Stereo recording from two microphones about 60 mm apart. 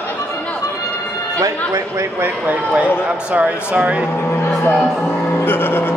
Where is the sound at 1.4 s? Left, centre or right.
Right.